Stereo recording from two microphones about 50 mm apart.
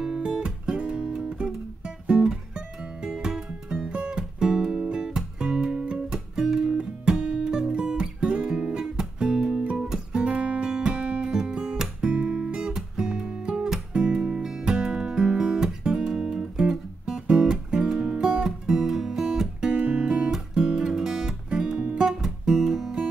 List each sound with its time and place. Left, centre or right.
0.0 s music: centre
0.3 s music: centre
19.7 s music: right